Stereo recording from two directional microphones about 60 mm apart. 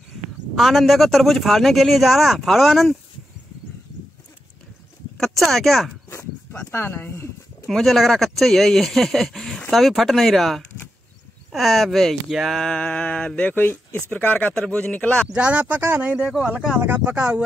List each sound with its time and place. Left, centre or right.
0.6 s speech: centre
5.2 s speech: centre
6.7 s speech: left
7.6 s speech: centre
12.7 s mantra: centre
13.5 s speech: left
15.2 s speech: centre
15.8 s speech: right
16.8 s speech: right